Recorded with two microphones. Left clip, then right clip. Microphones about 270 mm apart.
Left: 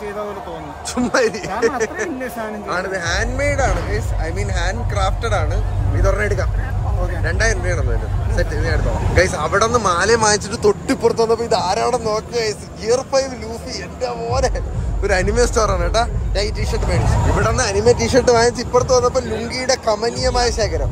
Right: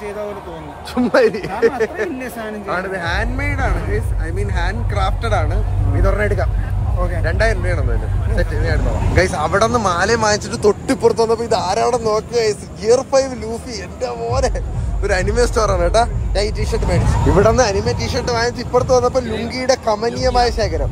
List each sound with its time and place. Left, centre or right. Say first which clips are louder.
0.9 s a man's voice: right 3 dB; centre
17.4 s speech: right 7 dB; centre
17.8 s speech: left 7 dB; left
18.3 s speech: right 1 dB; centre